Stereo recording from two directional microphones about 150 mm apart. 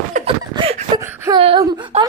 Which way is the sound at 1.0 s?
15° right (ahead or behind).